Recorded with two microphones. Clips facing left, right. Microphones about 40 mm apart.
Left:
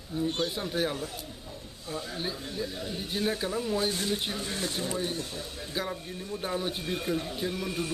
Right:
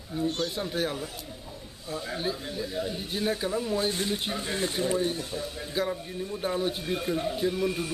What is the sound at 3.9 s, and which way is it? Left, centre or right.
Speech, centre.